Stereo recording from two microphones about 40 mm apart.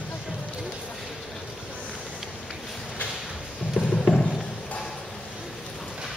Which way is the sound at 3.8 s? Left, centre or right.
Centre.